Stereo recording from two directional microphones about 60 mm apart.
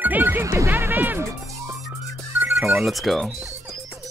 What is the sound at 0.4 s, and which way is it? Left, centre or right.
Music, right.